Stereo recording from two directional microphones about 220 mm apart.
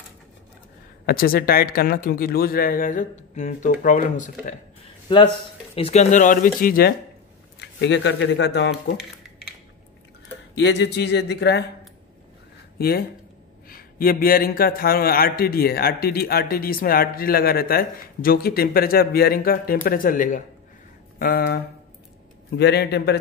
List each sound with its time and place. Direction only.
1.0 s a man's voice: 40° left (ahead or behind)
5.8 s a man's voice: 30° left (ahead or behind)
7.5 s speech: 55° left (ahead or behind)
10.5 s a man's voice: 50° left (ahead or behind)
12.7 s a man's voice: 45° left (ahead or behind)
22.6 s a man's voice: 50° left (ahead or behind)